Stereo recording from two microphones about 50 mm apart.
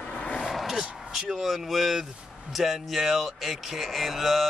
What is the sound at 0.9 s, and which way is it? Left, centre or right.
A man's voice, centre.